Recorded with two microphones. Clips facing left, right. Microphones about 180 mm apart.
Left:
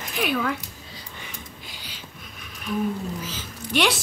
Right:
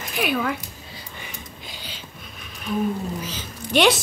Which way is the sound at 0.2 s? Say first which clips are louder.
Right 1 dB; 10° right (ahead or behind).